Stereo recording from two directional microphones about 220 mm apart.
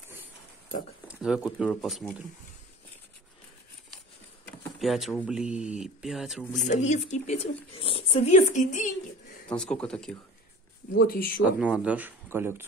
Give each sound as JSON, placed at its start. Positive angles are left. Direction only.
{"t": 1.0, "sound": "speech", "side_deg": -5}
{"t": 4.7, "sound": "speech", "side_deg": 0}
{"t": 6.7, "sound": "speech", "side_deg": 30}
{"t": 9.5, "sound": "speech", "side_deg": 5}
{"t": 10.9, "sound": "speech", "side_deg": 45}
{"t": 11.4, "sound": "speech", "side_deg": -5}